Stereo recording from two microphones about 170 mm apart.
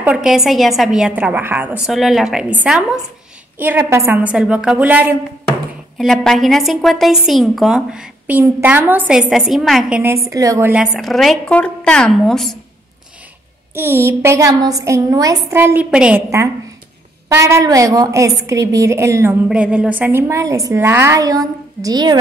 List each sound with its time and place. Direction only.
0.0 s a woman's voice: 5° right (ahead or behind)
5.5 s speech: centre (ahead or behind)
10.2 s a woman's voice: 20° right (ahead or behind)
10.7 s speech: 5° right (ahead or behind)
13.7 s a woman's voice: 15° right (ahead or behind)
19.5 s a woman's voice: 5° right (ahead or behind); by 22.2 s 25° right (ahead or behind)